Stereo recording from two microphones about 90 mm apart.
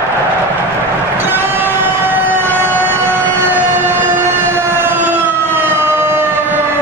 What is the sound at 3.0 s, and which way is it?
Siren, 25° right (ahead or behind).